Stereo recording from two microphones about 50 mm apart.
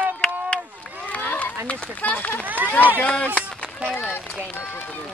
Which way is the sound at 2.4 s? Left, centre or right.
Right.